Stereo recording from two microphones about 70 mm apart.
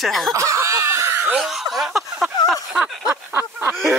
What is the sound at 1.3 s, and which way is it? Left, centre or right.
Speech, centre.